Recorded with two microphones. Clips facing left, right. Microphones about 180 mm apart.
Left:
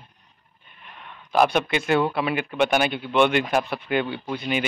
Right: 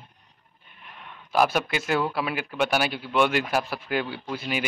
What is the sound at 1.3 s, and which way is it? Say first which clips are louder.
Speech: left 3 dB; 5° right (ahead or behind).